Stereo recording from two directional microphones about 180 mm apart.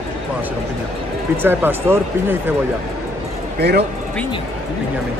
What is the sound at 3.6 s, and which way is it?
Speech, 65° right (ahead or behind).